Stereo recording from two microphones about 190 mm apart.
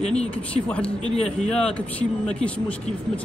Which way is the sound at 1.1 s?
35° left (ahead or behind).